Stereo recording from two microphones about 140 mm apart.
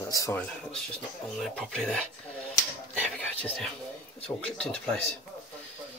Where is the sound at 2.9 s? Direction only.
10° left (ahead or behind).